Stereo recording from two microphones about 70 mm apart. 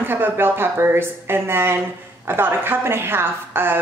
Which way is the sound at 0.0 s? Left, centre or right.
Right.